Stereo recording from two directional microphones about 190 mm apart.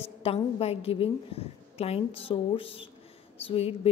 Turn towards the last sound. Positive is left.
turn(degrees=30)  # may be behind; listen again after turning